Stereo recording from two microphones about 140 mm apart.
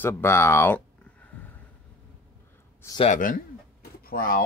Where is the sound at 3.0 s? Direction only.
75° left (ahead or behind); by 4.4 s 90° left.